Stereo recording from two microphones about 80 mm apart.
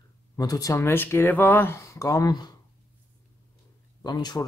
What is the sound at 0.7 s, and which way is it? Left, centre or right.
Speech, left.